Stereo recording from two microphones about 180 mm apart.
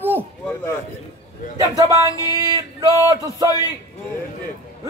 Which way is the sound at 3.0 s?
25° right (ahead or behind).